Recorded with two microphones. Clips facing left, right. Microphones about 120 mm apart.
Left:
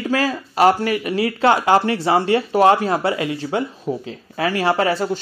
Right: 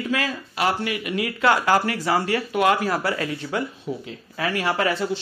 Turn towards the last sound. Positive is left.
turn(degrees=40)  # may be behind; listen again after turning